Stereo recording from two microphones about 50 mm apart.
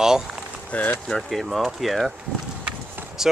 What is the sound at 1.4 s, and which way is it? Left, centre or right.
Speech, centre.